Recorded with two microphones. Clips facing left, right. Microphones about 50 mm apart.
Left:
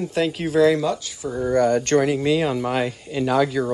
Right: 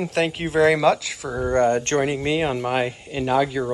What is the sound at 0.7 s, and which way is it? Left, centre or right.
Speech, right.